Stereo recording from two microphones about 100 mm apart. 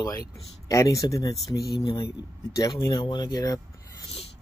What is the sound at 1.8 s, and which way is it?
Speech, 60° left (ahead or behind).